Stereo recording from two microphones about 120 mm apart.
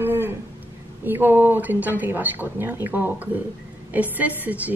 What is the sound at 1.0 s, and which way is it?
A woman's voice, 15° right (ahead or behind).